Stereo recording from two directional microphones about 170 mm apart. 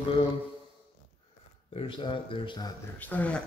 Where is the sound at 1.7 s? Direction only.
30° left (ahead or behind).